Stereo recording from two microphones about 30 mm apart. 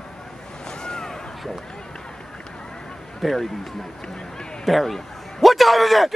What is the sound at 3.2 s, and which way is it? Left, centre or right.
Speech, centre.